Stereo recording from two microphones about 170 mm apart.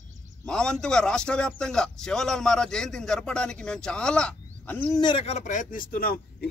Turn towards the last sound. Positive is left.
turn(degrees=60)  # may be behind; listen again after turning